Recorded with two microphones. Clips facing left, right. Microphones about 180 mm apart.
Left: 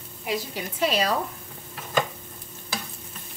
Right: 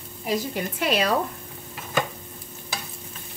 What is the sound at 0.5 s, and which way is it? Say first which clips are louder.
Speech: left 2 dB; 55° right (ahead or behind).